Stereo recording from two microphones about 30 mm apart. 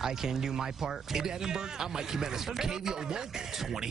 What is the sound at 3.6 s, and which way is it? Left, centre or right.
Speech, centre.